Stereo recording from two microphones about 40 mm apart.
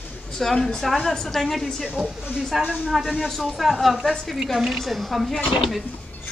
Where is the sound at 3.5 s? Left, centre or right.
Centre.